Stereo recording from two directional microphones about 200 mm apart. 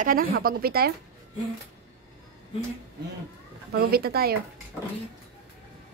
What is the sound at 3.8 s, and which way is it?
Speech, 50° right (ahead or behind).